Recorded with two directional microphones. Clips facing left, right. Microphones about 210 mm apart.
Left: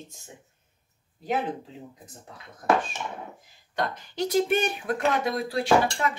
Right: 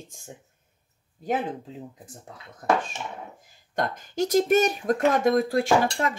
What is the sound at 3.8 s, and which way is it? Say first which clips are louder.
Speech: right 2 dB; 45° right (ahead or behind).